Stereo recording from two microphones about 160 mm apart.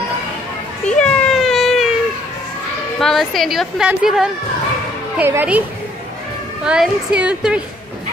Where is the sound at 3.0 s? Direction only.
Centre (ahead or behind).